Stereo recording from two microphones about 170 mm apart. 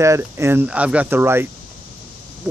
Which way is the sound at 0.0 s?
15° right (ahead or behind).